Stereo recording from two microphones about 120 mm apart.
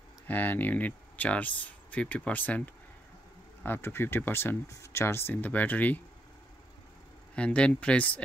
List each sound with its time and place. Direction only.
0.3 s speech: 15° left (ahead or behind)
7.3 s speech: 10° left (ahead or behind)